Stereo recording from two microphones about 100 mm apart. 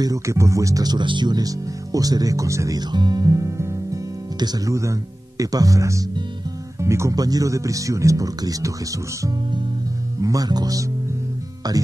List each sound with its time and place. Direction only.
0.0 s speech: 30° right (ahead or behind)
2.9 s music: 45° right (ahead or behind); by 4.0 s 30° right (ahead or behind)
4.4 s speech: 40° right (ahead or behind)
10.2 s speech: 40° right (ahead or behind)